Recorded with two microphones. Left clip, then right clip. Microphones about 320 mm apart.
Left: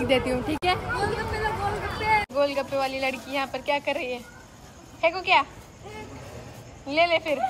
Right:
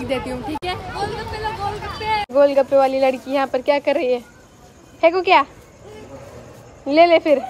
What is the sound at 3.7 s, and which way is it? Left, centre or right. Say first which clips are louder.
Speech: right 9 dB; centre.